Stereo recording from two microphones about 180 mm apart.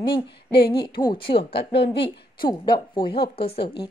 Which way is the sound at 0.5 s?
65° left (ahead or behind).